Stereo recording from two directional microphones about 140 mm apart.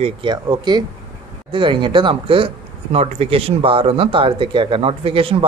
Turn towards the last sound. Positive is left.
turn(degrees=-40)  # may be behind; listen again after turning